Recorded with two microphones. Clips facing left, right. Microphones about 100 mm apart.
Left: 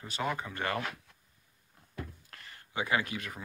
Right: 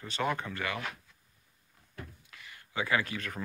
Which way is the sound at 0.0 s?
10° left (ahead or behind).